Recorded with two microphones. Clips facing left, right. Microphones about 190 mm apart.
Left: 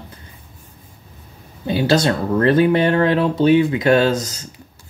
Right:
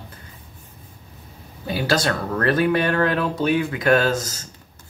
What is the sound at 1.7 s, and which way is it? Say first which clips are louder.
Speech: left 5 dB; 25° left (ahead or behind).